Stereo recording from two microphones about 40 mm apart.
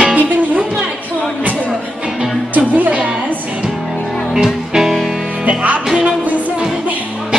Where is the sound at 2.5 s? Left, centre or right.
Right.